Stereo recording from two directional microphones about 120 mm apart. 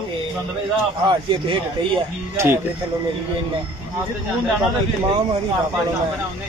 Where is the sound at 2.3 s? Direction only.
20° right (ahead or behind).